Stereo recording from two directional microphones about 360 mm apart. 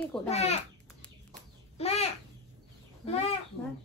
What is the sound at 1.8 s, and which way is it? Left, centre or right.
Speech, centre.